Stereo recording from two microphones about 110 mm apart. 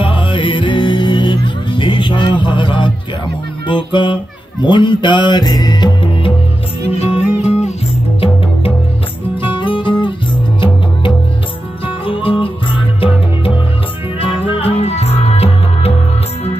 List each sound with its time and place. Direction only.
0.0 s music: 50° left (ahead or behind)
6.9 s music: 70° left (ahead or behind)
9.4 s music: 50° left (ahead or behind)
11.8 s music: 55° left (ahead or behind)
14.2 s music: 60° left (ahead or behind)